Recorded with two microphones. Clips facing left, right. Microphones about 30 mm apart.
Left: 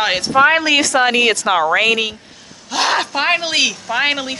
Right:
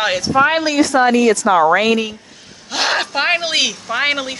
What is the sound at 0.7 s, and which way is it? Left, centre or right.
Speech, left.